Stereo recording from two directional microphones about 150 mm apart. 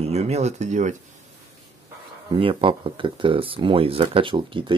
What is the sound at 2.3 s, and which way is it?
Speech, 35° right (ahead or behind).